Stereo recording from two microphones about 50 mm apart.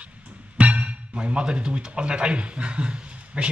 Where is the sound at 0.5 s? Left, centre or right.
Right.